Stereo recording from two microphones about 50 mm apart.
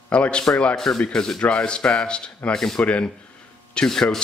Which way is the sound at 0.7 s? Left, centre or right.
Centre.